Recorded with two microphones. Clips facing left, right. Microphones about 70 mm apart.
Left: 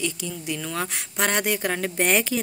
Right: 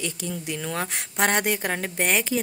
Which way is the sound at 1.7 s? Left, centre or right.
Centre.